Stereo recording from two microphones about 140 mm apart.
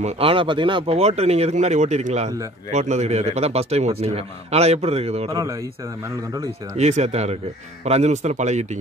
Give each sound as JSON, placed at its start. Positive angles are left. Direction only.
{"t": 0.0, "sound": "a man's voice", "side_deg": -40}
{"t": 5.3, "sound": "speech", "side_deg": -25}
{"t": 6.8, "sound": "a man's voice", "side_deg": -55}